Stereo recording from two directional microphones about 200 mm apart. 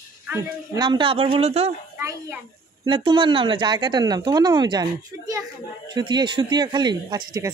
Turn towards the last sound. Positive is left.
turn(degrees=-20)  # may be behind; listen again after turning